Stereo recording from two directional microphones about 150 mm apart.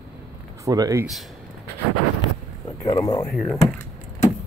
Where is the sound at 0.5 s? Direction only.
20° right (ahead or behind).